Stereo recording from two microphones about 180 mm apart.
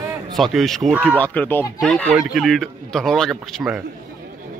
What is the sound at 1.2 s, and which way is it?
Speech, 10° left (ahead or behind).